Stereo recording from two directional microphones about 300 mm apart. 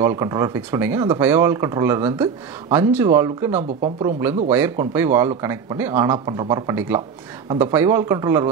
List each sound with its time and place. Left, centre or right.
0.0 s speech: centre
3.5 s speech: centre
4.5 s speech: centre